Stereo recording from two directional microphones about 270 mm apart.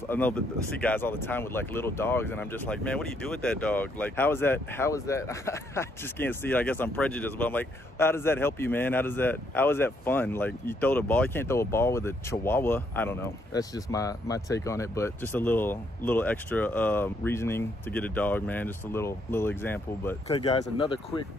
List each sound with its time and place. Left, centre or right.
0.1 s speech: centre
20.2 s speech: centre